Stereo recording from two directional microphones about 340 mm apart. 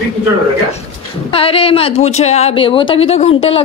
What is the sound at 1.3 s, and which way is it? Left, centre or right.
Speech, centre.